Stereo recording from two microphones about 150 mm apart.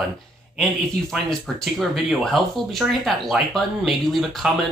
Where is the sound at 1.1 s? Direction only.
Centre (ahead or behind).